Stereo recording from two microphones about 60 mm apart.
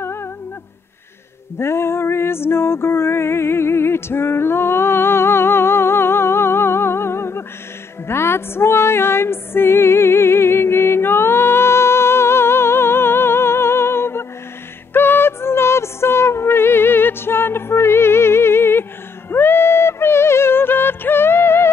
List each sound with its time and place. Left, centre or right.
0.0 s humming: left
1.6 s music: left